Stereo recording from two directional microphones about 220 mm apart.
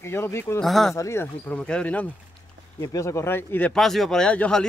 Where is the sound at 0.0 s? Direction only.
10° left (ahead or behind).